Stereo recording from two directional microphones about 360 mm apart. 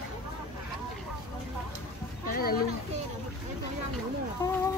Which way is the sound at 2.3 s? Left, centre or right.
Left.